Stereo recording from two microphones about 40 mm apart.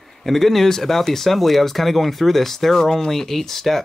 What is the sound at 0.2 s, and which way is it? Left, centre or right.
Speech, centre.